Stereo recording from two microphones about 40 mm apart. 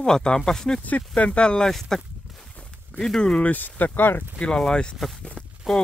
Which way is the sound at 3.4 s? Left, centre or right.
Left.